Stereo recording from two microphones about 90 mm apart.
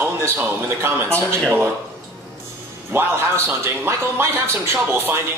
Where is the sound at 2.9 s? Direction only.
30° right (ahead or behind).